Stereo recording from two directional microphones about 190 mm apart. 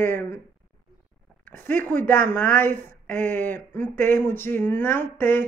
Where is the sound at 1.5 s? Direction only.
10° left (ahead or behind).